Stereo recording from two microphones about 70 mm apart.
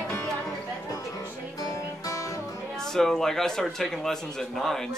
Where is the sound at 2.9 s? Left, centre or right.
Centre.